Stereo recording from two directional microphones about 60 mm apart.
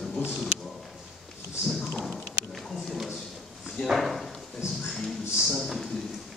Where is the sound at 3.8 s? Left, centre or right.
Centre.